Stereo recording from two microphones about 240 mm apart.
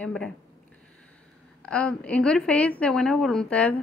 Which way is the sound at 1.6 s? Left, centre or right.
Centre.